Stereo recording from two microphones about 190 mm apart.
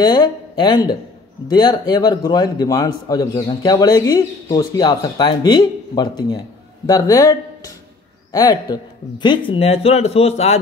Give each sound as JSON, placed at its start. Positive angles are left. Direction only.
{"t": 0.0, "sound": "a man's voice", "side_deg": 20}